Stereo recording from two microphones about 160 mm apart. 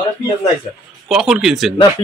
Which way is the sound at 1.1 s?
5° right (ahead or behind).